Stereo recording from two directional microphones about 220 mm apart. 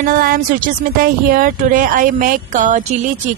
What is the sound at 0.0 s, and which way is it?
Speech, 40° right (ahead or behind).